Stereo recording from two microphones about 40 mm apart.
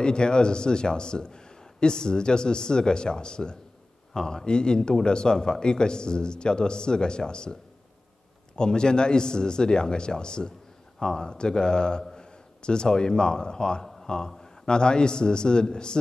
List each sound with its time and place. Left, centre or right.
0.0 s a man's voice: left
8.5 s a man's voice: left